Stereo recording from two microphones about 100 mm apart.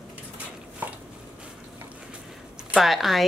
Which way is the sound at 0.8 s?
20° right (ahead or behind).